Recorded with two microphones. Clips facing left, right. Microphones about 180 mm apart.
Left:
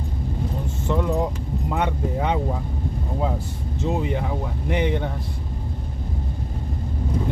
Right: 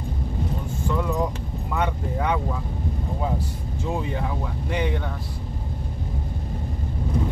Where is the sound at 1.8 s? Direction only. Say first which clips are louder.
Left 1 dB; 25° left (ahead or behind).